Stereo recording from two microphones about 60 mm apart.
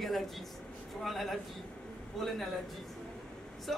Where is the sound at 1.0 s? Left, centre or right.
Centre.